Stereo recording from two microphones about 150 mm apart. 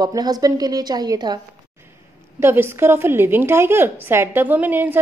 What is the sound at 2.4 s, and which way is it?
A woman's voice, 15° right (ahead or behind).